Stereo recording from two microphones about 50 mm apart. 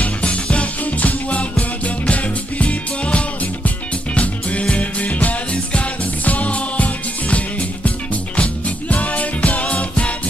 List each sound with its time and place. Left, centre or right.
0.0 s music: left